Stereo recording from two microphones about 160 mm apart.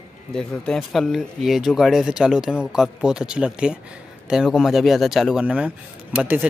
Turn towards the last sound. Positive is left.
turn(degrees=-10)  # may be behind; listen again after turning